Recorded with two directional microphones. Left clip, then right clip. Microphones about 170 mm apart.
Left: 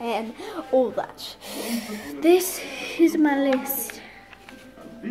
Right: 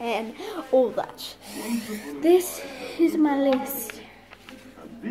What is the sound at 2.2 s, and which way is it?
A woman's voice, 40° left (ahead or behind).